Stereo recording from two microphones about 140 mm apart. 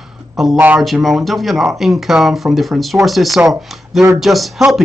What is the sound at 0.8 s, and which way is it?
Speech, centre (ahead or behind).